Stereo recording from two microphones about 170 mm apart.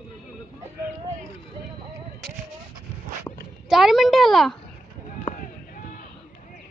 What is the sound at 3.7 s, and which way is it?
Speech, centre (ahead or behind).